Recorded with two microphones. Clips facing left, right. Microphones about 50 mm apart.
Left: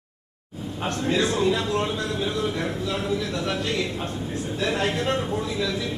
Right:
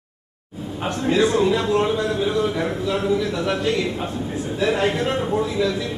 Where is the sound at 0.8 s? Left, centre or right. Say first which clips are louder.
Right 5 dB; centre.